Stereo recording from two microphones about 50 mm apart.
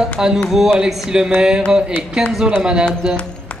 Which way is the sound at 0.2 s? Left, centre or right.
Centre.